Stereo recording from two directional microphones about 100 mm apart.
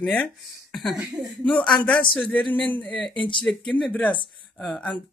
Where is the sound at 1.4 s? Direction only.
10° left (ahead or behind).